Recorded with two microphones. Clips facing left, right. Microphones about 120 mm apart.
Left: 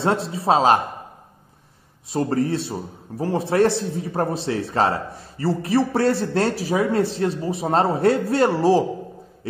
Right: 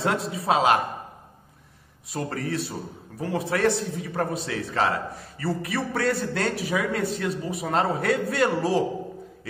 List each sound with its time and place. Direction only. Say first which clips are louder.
0.0 s a man's voice: left 4 dB; 30° left (ahead or behind)
2.1 s a man's voice: left 7 dB; 30° left (ahead or behind)